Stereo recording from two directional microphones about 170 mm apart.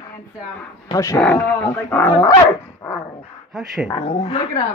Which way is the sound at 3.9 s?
35° left (ahead or behind).